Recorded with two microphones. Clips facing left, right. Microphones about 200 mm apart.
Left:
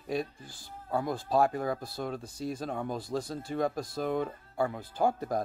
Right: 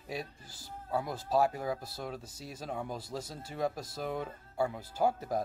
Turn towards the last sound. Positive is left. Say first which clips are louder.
# left 2 dB
turn(degrees=-5)  # may be behind; listen again after turning